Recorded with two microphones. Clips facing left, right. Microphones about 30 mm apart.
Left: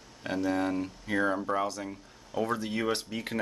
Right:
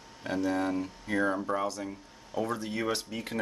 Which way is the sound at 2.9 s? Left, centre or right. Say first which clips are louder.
Left 1 dB; left.